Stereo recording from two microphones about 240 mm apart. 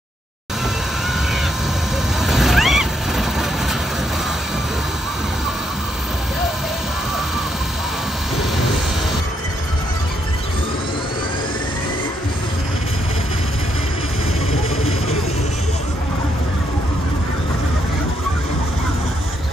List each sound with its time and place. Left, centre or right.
2.1 s vehicle: centre
14.5 s vehicle: left